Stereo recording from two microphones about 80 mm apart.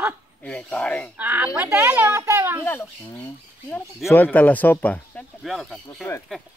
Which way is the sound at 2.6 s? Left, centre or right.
Left.